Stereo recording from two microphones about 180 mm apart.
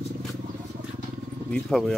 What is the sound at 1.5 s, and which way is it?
Speech, centre (ahead or behind).